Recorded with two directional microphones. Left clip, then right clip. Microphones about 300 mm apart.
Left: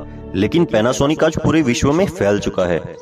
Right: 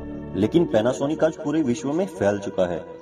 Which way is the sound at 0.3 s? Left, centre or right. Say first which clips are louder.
Left 4 dB; left.